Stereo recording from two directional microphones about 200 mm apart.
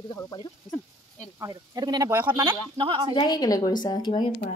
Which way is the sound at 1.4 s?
20° right (ahead or behind).